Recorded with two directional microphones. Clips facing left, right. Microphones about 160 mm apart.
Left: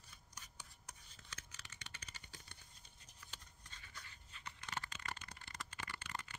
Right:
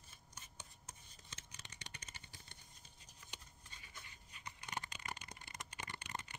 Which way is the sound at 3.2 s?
15° right (ahead or behind).